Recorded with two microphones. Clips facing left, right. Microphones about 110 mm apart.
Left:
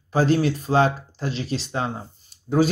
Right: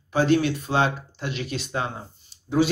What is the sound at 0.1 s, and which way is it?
Speech, 35° left (ahead or behind).